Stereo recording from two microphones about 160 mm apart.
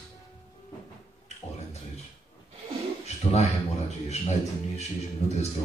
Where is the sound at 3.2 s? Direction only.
45° left (ahead or behind).